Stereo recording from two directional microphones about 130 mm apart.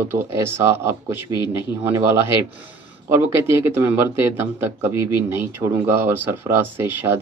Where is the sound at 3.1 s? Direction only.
20° right (ahead or behind).